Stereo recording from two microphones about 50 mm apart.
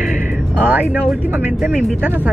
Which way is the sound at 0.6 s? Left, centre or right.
Right.